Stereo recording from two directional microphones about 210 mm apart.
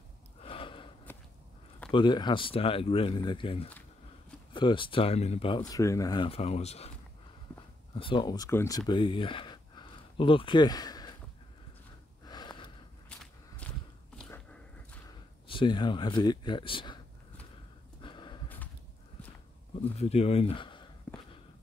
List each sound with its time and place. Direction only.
0.4 s gasp: 25° left (ahead or behind)
1.9 s speech: 20° left (ahead or behind)
7.9 s speech: 25° left (ahead or behind)
12.3 s gasp: 20° left (ahead or behind)
13.2 s walk: 5° left (ahead or behind)
15.0 s speech: 25° left (ahead or behind)
18.0 s a sound: 20° left (ahead or behind)
20.0 s a sound: 30° left (ahead or behind)